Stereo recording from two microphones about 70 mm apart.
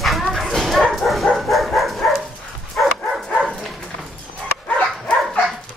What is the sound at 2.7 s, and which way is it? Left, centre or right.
Dog, centre.